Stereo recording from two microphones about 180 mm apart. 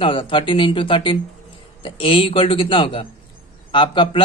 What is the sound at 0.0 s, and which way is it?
A man's voice, 30° left (ahead or behind).